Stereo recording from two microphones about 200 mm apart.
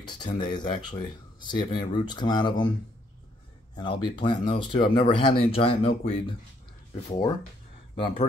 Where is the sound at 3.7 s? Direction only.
25° left (ahead or behind).